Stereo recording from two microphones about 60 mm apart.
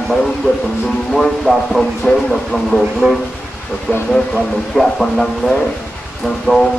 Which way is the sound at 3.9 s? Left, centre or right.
Centre.